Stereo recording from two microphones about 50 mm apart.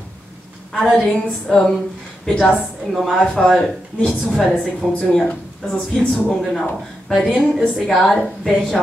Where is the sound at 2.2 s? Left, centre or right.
Centre.